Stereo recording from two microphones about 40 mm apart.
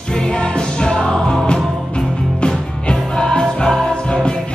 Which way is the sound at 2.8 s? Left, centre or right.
Left.